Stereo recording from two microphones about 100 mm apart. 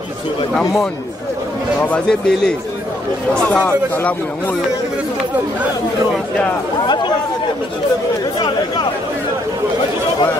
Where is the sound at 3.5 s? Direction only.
15° left (ahead or behind).